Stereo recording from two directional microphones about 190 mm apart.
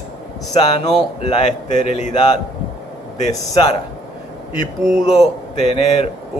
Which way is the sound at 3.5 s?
30° left (ahead or behind).